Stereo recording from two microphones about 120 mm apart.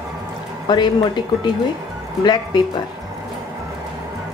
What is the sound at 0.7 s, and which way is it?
Speech, 40° left (ahead or behind).